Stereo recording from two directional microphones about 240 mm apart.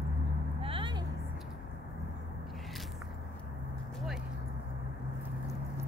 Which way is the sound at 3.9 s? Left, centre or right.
Centre.